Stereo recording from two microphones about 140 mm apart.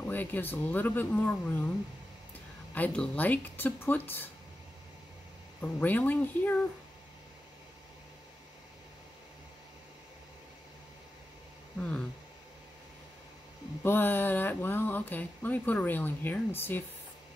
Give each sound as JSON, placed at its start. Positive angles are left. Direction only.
{"t": 0.0, "sound": "speech", "side_deg": 15}
{"t": 2.7, "sound": "speech", "side_deg": 10}
{"t": 5.6, "sound": "speech", "side_deg": 10}
{"t": 11.8, "sound": "speech", "side_deg": 10}
{"t": 13.8, "sound": "speech", "side_deg": 15}